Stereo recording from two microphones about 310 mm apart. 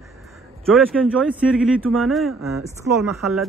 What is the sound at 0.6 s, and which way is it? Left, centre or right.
Speech, centre.